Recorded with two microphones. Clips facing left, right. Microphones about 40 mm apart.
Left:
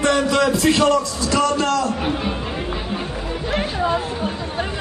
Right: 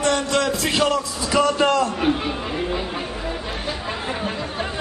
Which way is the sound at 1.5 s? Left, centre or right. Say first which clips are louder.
Right 1 dB; right.